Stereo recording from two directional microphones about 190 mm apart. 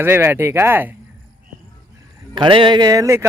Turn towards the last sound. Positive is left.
turn(degrees=-15)  # may be behind; listen again after turning